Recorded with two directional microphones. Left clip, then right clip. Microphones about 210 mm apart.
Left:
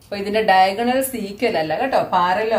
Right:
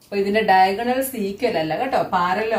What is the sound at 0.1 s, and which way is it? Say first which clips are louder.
A woman's voice: left 1 dB; 40° left (ahead or behind).